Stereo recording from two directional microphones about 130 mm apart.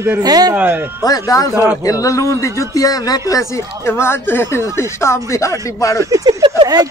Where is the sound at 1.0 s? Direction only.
30° left (ahead or behind).